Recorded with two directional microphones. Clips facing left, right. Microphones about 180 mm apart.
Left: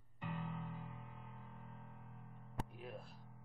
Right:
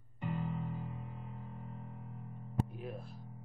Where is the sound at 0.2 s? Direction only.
30° right (ahead or behind).